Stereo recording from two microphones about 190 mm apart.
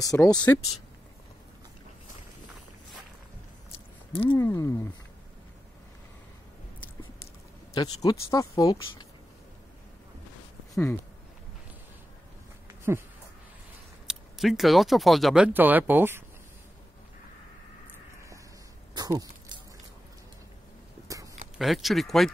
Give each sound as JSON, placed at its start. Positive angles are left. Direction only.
{"t": 0.0, "sound": "speech", "side_deg": 20}
{"t": 4.1, "sound": "speech", "side_deg": 30}
{"t": 4.4, "sound": "speech", "side_deg": 15}
{"t": 7.7, "sound": "speech", "side_deg": 20}
{"t": 10.7, "sound": "speech", "side_deg": 10}
{"t": 14.0, "sound": "speech", "side_deg": 0}
{"t": 18.9, "sound": "a sound", "side_deg": -20}
{"t": 21.5, "sound": "speech", "side_deg": 0}